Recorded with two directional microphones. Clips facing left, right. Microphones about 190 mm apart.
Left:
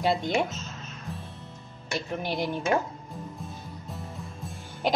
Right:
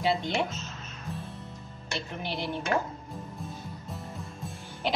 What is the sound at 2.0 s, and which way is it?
Speech, 45° left (ahead or behind).